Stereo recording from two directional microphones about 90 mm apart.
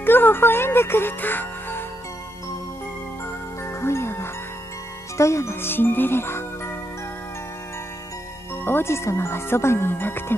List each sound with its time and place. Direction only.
0.0 s speech: 25° left (ahead or behind)
3.6 s music: 30° left (ahead or behind)
5.1 s speech: 35° left (ahead or behind)
8.6 s speech: 25° left (ahead or behind)